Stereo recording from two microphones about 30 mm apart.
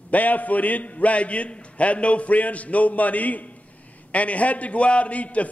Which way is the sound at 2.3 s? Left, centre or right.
Left.